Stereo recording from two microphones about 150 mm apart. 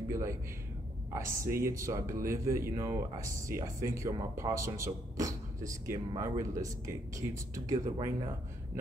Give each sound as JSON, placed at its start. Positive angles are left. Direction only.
{"t": 0.1, "sound": "a man's voice", "side_deg": -20}